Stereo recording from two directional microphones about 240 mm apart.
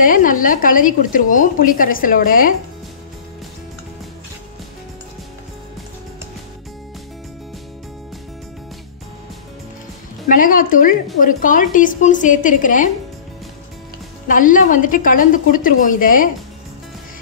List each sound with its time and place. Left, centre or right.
0.0 s a woman's voice: left
10.2 s a woman's voice: left
14.2 s a woman's voice: left